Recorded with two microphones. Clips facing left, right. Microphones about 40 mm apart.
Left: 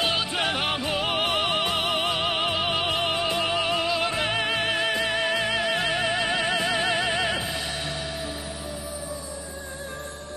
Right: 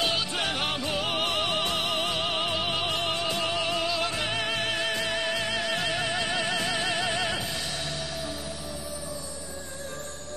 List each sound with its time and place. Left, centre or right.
0.0 s music: centre